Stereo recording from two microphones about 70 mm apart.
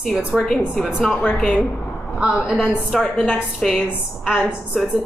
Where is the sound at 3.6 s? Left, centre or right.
Centre.